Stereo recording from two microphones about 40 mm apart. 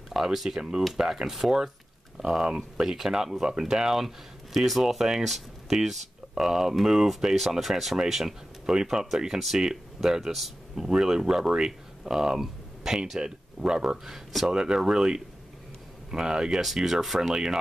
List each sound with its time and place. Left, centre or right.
0.1 s speech: centre